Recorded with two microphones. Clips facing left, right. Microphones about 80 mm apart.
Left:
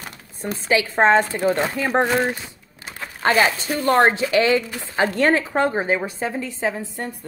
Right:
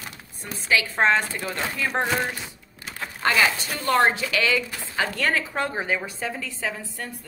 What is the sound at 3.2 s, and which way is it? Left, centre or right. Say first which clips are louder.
A woman's voice: left 4 dB; left.